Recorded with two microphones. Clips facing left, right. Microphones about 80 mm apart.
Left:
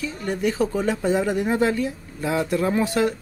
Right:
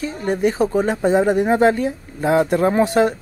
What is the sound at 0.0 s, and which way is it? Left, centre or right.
Speech, right.